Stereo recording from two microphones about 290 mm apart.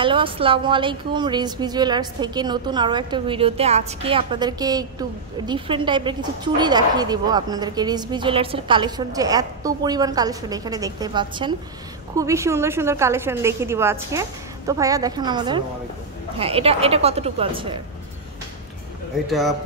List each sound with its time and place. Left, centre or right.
0.0 s speech: centre
19.2 s a man's voice: centre